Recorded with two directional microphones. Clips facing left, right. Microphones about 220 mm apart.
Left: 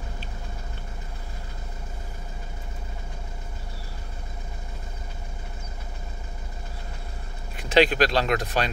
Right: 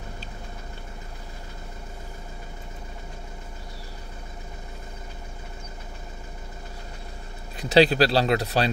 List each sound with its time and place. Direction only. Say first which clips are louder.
7.5 s speech: right 2 dB; 35° right (ahead or behind)